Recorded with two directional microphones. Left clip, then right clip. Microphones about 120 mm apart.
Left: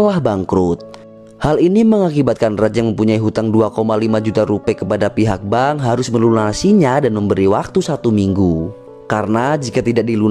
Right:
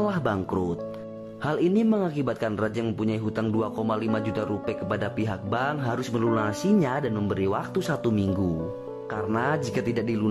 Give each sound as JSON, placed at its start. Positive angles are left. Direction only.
{"t": 0.0, "sound": "speech", "side_deg": 40}